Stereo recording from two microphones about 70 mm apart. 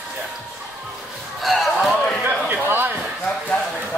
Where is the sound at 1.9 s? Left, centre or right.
Centre.